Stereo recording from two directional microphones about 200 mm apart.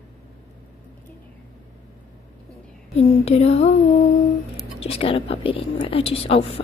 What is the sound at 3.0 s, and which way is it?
Speech, 30° left (ahead or behind).